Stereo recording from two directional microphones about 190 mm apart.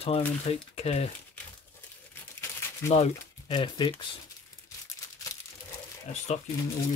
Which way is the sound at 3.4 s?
25° left (ahead or behind).